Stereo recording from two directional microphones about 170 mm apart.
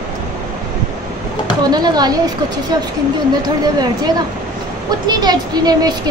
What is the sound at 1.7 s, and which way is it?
Speech, 25° right (ahead or behind).